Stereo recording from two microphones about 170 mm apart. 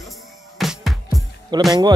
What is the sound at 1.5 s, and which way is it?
Speech, 25° right (ahead or behind).